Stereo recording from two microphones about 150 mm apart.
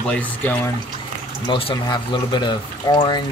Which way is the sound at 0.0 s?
10° left (ahead or behind).